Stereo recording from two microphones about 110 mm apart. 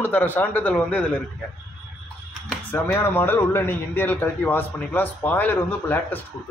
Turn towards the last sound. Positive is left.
turn(degrees=15)  # may be behind; listen again after turning